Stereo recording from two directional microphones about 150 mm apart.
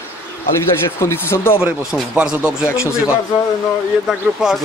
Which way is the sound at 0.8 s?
15° left (ahead or behind).